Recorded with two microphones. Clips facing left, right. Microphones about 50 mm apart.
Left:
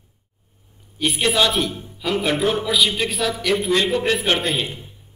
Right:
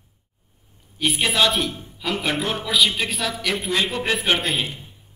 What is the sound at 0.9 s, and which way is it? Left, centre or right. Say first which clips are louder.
A man's voice: left 2 dB; centre.